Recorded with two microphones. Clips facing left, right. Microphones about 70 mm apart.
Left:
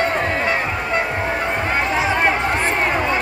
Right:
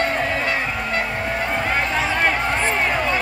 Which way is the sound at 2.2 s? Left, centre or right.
Left.